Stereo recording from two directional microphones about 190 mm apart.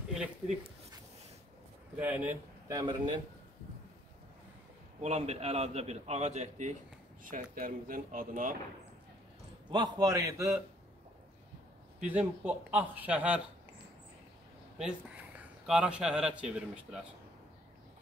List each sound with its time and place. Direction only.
2.0 s speech: 10° right (ahead or behind)
5.0 s a man's voice: 35° right (ahead or behind)
7.5 s speech: 45° right (ahead or behind)
9.7 s speech: 20° right (ahead or behind)
12.0 s speech: 5° right (ahead or behind)
14.8 s speech: 5° right (ahead or behind)